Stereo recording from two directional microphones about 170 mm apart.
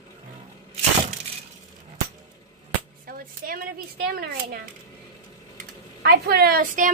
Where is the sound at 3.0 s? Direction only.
55° right (ahead or behind).